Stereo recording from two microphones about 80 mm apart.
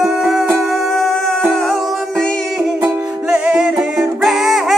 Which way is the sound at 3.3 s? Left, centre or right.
Centre.